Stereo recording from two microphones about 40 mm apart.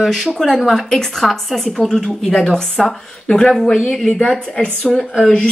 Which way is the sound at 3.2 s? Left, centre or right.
Centre.